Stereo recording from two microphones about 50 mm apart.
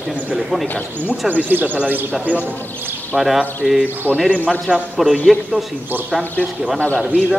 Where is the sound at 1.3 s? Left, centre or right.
Right.